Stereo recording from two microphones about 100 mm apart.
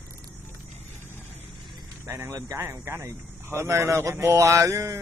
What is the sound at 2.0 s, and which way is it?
A man's voice, 35° right (ahead or behind).